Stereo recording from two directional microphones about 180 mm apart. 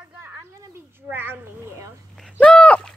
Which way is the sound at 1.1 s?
10° right (ahead or behind).